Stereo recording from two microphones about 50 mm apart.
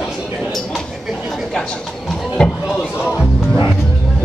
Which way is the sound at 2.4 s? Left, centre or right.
Centre.